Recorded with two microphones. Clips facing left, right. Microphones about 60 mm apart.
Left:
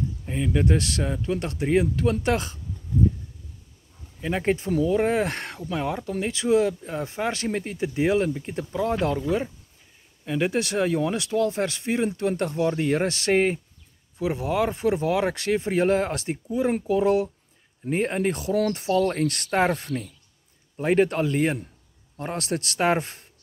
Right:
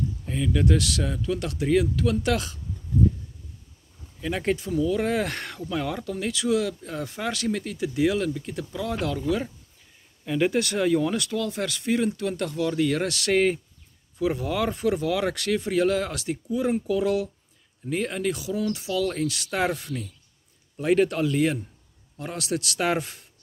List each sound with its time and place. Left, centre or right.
0.2 s speech: left
4.2 s speech: left
4.6 s speech: left
4.9 s speech: left
10.2 s speech: centre; by 19.6 s left
19.6 s speech: left